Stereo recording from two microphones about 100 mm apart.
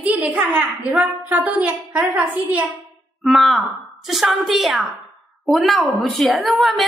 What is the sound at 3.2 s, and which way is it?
A woman's voice, centre (ahead or behind).